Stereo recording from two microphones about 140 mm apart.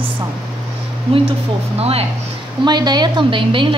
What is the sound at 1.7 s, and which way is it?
Speech, 45° right (ahead or behind).